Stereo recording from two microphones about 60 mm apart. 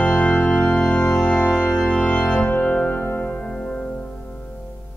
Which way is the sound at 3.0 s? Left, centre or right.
Left.